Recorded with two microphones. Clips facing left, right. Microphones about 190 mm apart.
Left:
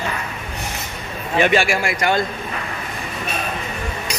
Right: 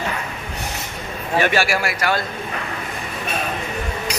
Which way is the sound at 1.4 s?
20° left (ahead or behind).